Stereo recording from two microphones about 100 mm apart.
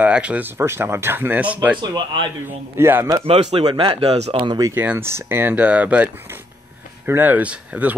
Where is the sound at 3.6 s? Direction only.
60° right (ahead or behind); by 4.5 s 85° right.